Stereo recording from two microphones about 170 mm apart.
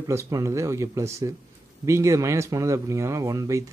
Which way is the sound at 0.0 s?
20° right (ahead or behind).